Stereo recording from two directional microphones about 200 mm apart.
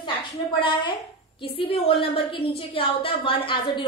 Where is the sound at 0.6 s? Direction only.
25° left (ahead or behind).